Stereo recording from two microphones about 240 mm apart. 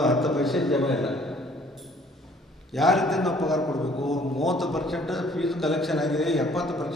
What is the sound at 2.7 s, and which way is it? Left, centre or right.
A man's voice, centre.